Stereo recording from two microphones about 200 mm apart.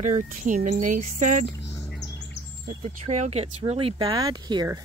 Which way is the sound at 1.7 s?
10° left (ahead or behind).